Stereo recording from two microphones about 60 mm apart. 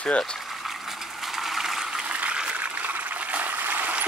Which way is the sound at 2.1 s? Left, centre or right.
Centre.